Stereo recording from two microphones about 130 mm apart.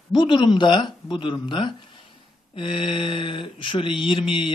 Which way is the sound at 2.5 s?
40° left (ahead or behind).